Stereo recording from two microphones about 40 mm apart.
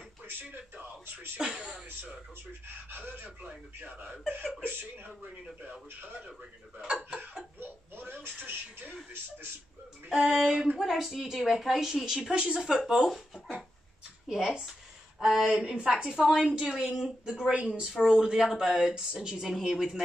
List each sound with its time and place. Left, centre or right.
0.3 s speech: right
1.4 s a woman's voice: right
3.8 s speech: right
4.6 s speech: right
6.9 s a woman's voice: right
7.9 s speech: right
10.0 s a woman's voice: centre
12.3 s a woman's voice: right; by 13.7 s centre
15.1 s speech: centre
15.6 s a woman's voice: right